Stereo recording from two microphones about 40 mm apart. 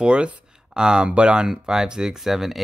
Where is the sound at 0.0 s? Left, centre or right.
Right.